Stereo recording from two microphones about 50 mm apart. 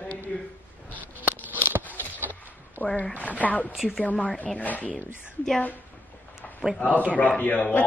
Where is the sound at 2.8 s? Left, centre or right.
Left.